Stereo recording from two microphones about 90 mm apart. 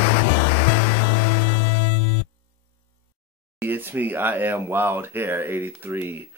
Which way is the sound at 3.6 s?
25° right (ahead or behind).